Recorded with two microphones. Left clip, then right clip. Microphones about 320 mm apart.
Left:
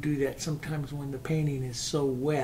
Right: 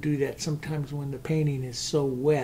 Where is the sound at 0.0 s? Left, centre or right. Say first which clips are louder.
Right 2 dB; right.